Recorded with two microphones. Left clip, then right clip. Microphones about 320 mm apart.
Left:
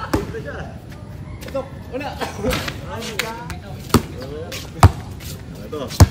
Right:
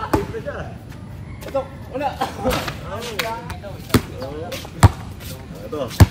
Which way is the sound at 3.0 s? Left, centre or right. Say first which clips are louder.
Right 1 dB; centre.